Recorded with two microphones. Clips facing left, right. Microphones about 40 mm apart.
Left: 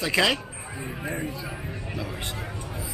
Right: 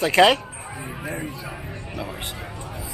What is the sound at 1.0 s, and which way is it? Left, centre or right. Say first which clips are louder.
Speech: even; centre.